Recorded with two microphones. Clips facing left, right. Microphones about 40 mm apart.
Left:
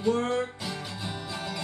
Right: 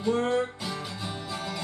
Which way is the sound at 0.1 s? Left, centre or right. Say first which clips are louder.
Right 2 dB; centre.